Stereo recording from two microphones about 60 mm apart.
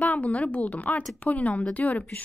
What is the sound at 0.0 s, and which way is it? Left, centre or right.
A woman's voice, left.